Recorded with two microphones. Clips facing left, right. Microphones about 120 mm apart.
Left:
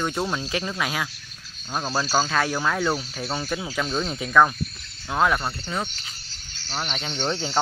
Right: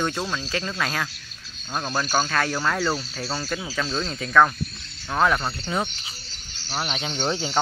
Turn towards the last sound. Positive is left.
turn(degrees=-10)  # may be behind; listen again after turning